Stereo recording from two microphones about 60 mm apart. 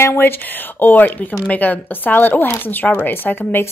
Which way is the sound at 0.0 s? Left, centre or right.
Left.